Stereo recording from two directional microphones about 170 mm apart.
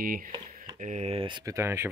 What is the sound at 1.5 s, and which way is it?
Speech, 15° right (ahead or behind).